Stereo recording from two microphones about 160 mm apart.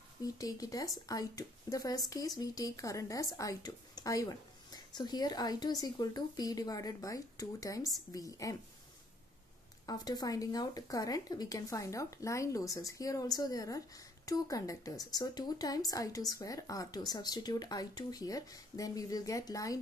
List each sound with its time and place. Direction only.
0.2 s speech: 20° left (ahead or behind)
9.8 s speech: 25° left (ahead or behind)